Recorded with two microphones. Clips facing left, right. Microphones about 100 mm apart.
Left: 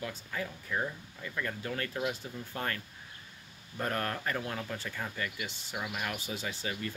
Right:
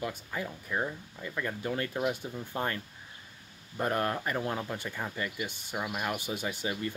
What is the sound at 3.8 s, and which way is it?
Speech, 20° right (ahead or behind).